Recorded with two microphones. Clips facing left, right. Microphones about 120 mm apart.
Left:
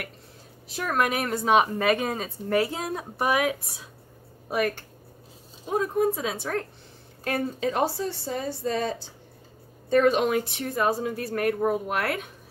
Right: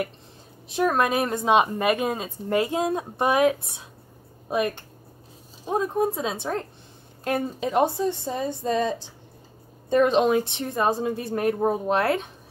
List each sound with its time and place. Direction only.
0.7 s a woman's voice: 25° right (ahead or behind)